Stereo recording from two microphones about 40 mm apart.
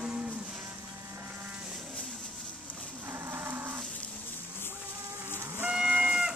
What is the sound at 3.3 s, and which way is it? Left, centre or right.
Cattle, right.